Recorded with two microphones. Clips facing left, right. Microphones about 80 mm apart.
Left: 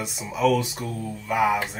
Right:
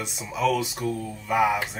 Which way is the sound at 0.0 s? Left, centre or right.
Centre.